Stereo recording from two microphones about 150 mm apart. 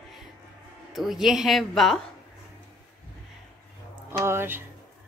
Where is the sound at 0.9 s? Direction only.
Centre (ahead or behind).